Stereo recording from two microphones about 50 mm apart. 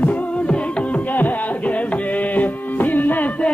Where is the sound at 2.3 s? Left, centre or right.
Left.